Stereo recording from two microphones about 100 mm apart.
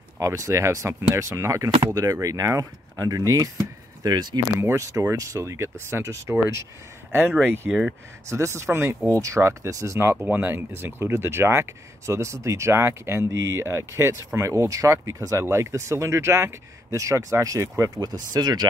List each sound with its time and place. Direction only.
0.2 s speech: 30° right (ahead or behind)
4.6 s speech: 30° right (ahead or behind)
7.7 s speech: 5° right (ahead or behind)
8.3 s speech: 30° right (ahead or behind)